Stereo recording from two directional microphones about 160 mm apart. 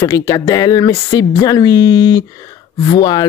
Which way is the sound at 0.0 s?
20° left (ahead or behind).